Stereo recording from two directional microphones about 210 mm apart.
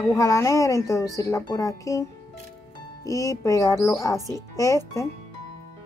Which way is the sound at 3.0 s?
15° left (ahead or behind).